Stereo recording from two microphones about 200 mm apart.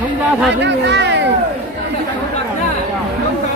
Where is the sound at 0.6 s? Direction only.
60° right (ahead or behind).